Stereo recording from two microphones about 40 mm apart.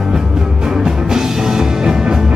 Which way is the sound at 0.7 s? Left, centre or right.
Centre.